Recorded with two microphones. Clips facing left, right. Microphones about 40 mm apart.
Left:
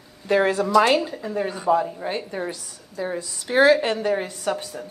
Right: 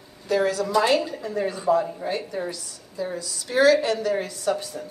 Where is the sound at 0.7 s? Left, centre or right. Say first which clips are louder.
Left 3 dB; left.